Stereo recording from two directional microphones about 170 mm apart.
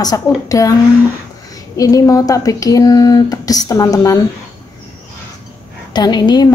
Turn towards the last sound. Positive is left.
turn(degrees=25)  # may be behind; listen again after turning